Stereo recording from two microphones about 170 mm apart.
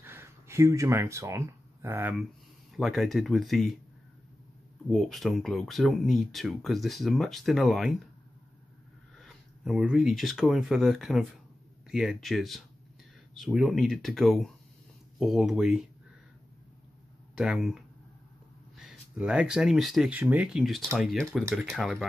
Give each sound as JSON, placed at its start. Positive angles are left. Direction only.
{"t": 0.0, "sound": "speech", "side_deg": -15}
{"t": 2.7, "sound": "speech", "side_deg": 0}
{"t": 4.8, "sound": "speech", "side_deg": 0}
{"t": 9.2, "sound": "speech", "side_deg": 0}
{"t": 17.4, "sound": "speech", "side_deg": -5}